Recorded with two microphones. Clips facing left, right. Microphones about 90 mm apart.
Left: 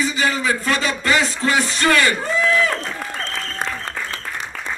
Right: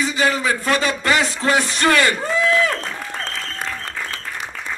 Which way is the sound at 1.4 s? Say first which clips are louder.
Right 1 dB; 25° right (ahead or behind).